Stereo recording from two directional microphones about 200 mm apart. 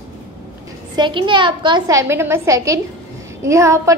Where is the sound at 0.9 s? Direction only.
25° right (ahead or behind).